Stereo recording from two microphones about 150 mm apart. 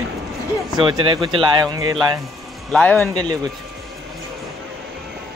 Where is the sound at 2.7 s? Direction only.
10° left (ahead or behind).